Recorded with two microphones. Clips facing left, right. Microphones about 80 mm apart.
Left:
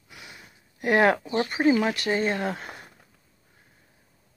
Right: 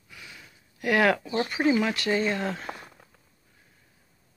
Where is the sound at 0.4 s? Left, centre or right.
Left.